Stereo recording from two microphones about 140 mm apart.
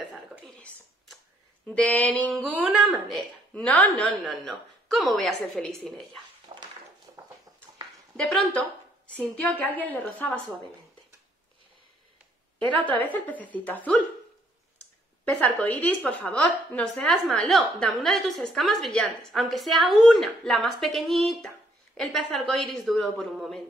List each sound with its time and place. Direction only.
0.1 s a sound: centre (ahead or behind)
1.7 s a woman's voice: 10° left (ahead or behind)
2.3 s a woman's voice: centre (ahead or behind)
6.5 s a sound: 40° right (ahead or behind)
8.2 s a woman's voice: centre (ahead or behind)
12.8 s a woman's voice: 10° left (ahead or behind)
15.3 s a woman's voice: 10° left (ahead or behind)